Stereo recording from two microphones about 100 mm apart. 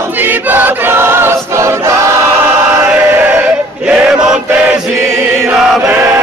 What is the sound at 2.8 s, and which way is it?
Choir, 15° right (ahead or behind).